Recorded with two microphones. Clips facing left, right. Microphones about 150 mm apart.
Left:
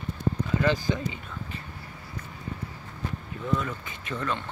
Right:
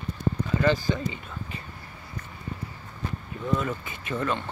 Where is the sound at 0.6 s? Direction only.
10° left (ahead or behind).